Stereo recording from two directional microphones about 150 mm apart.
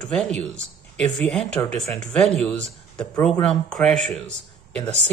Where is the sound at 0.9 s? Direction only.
5° left (ahead or behind).